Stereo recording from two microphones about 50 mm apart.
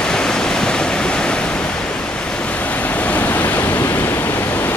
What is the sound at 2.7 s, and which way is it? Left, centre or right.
Waves, left.